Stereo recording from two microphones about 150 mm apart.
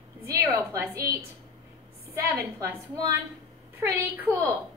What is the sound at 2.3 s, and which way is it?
Speech, 20° right (ahead or behind).